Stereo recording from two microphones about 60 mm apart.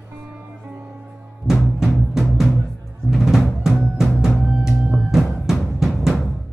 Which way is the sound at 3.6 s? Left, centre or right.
Centre.